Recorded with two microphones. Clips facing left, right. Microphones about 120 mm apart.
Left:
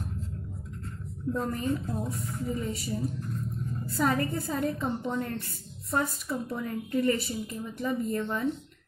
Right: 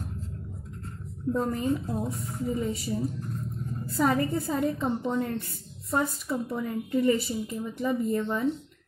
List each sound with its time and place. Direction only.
1.3 s a woman's voice: 20° right (ahead or behind)